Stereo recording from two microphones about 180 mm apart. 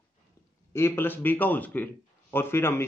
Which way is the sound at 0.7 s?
10° left (ahead or behind).